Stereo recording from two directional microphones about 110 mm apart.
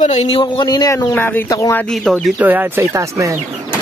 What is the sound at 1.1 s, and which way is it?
Speech, 20° left (ahead or behind).